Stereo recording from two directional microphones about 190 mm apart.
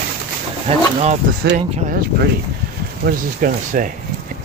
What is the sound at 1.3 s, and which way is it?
Speech, 50° right (ahead or behind).